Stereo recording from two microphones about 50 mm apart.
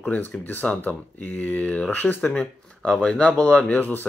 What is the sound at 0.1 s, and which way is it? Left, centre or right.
Speech, left.